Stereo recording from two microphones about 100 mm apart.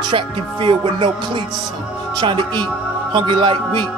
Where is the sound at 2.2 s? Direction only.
50° right (ahead or behind).